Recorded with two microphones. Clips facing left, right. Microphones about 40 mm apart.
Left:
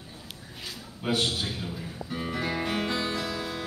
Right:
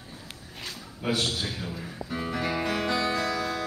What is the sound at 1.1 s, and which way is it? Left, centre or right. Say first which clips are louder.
Speech: left 1 dB; left.